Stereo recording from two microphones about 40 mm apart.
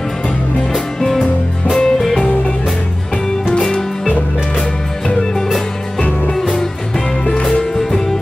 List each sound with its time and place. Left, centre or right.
1.8 s music: centre
3.5 s music: centre